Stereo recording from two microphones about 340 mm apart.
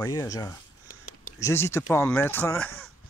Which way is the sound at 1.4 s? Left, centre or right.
Centre.